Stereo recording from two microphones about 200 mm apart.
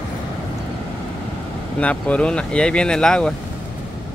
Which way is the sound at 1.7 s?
5° left (ahead or behind).